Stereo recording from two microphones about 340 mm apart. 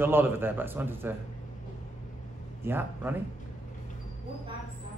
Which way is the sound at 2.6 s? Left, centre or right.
Centre.